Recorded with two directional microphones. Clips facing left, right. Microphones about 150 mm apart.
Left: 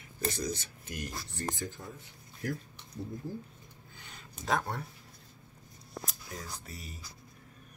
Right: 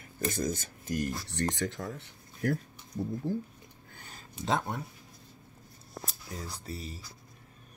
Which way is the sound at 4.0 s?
40° right (ahead or behind).